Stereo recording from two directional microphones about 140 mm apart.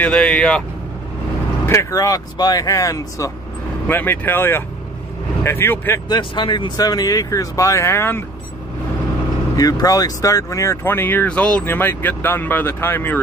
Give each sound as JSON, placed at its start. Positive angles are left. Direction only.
{"t": 0.0, "sound": "speech", "side_deg": 5}
{"t": 1.7, "sound": "speech", "side_deg": 20}
{"t": 6.0, "sound": "speech", "side_deg": 35}
{"t": 9.6, "sound": "speech", "side_deg": 25}